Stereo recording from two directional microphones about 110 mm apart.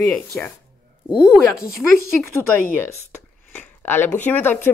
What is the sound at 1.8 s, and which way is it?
Speech, 10° left (ahead or behind).